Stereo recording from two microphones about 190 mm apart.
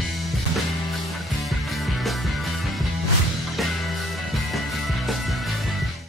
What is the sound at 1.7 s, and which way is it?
Music, centre (ahead or behind).